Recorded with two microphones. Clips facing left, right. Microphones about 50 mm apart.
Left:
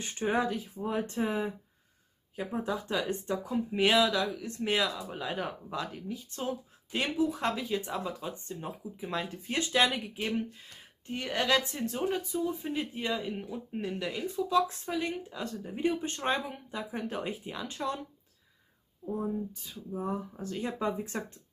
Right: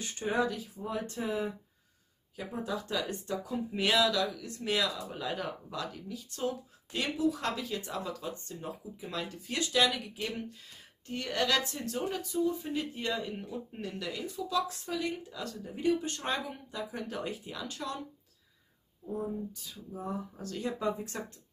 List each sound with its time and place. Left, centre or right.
0.0 s speech: left
2.5 s speech: left
11.1 s speech: centre
19.0 s a sound: centre
19.5 s speech: left